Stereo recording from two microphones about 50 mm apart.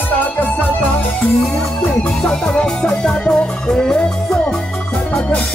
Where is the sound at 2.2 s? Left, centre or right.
Centre.